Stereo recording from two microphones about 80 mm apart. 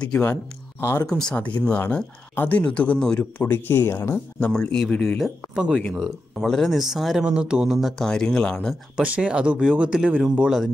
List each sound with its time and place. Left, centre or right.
0.2 s speech: left
1.0 s speech: centre
1.3 s speech: centre
3.3 s speech: left
4.5 s speech: centre
5.5 s speech: centre
6.4 s speech: centre
8.1 s speech: centre
9.0 s speech: centre